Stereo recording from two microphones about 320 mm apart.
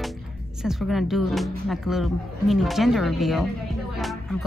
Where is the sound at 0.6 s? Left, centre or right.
Centre.